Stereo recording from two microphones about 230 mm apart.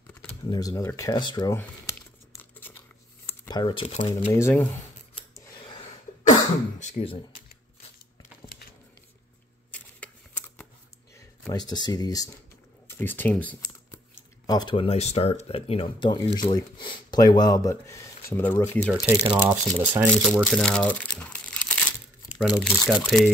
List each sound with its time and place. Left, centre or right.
0.5 s speech: centre
2.6 s tearing: centre
3.3 s speech: centre
4.3 s speech: centre
5.3 s scissors: centre
6.8 s speech: left
9.7 s a sound: centre
11.4 s speech: centre
19.2 s speech: right
19.8 s speech: centre